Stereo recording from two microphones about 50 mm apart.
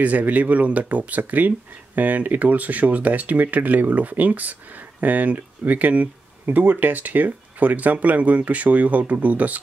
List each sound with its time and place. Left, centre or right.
0.0 s speech: right